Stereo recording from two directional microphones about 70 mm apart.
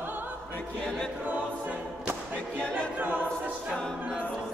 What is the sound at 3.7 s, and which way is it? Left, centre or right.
A capella, centre.